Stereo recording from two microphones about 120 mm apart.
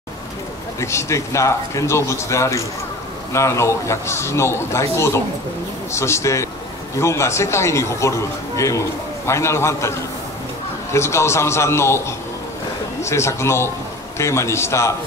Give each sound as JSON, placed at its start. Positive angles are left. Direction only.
{"t": 0.7, "sound": "speech", "side_deg": 25}
{"t": 13.0, "sound": "speech", "side_deg": 25}